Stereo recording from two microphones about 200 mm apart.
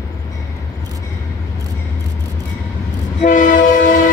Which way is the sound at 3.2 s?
40° left (ahead or behind).